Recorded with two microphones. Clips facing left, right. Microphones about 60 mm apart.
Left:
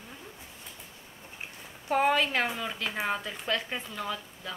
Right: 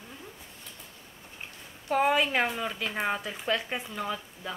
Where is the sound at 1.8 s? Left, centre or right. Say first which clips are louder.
Even; centre.